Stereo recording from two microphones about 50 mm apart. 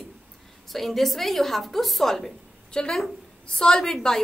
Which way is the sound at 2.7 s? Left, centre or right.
Centre.